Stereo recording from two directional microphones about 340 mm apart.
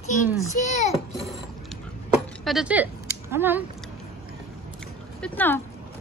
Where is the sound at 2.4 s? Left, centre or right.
Centre.